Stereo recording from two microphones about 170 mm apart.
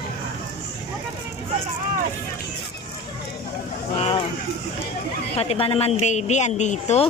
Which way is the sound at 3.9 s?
35° left (ahead or behind).